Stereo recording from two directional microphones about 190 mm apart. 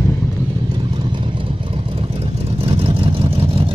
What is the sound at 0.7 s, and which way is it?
Vehicle, 25° right (ahead or behind).